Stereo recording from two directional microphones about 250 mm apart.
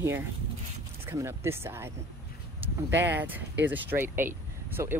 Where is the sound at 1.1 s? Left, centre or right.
Centre.